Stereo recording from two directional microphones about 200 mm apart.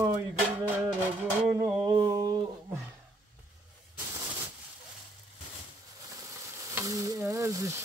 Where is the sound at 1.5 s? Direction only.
15° right (ahead or behind).